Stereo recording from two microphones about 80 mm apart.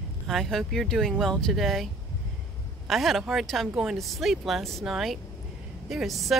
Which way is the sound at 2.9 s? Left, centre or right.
Centre.